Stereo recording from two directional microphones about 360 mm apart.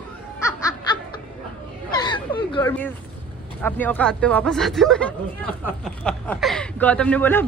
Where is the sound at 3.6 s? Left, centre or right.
Centre.